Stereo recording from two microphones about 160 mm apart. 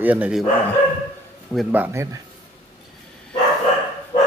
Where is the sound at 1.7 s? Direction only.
10° right (ahead or behind).